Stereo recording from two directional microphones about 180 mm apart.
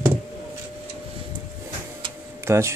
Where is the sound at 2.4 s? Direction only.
15° right (ahead or behind).